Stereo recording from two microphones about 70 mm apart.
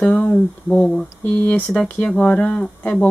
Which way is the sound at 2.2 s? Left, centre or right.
Left.